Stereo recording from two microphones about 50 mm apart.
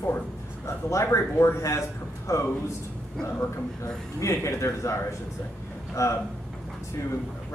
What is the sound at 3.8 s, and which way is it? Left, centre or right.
A man's voice, left.